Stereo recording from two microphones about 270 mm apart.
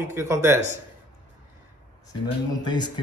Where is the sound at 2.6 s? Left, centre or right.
Centre.